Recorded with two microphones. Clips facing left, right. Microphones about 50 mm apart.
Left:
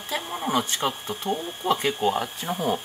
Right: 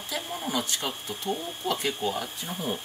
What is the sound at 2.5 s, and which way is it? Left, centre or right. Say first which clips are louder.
Speech: left 7 dB; left.